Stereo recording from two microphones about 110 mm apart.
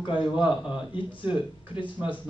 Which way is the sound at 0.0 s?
50° left (ahead or behind).